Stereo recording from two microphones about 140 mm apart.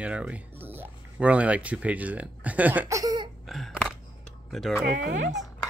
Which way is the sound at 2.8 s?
25° right (ahead or behind).